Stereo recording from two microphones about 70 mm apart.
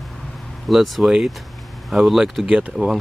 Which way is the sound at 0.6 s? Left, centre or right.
Centre.